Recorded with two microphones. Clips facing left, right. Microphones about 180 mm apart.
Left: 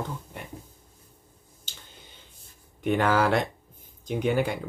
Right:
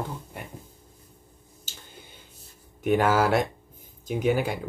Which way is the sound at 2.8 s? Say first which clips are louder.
Right 1 dB; 5° right (ahead or behind).